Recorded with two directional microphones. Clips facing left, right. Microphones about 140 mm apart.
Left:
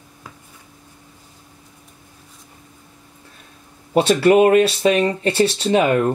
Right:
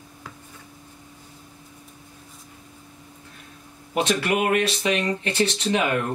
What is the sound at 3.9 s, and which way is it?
Speech, 30° left (ahead or behind).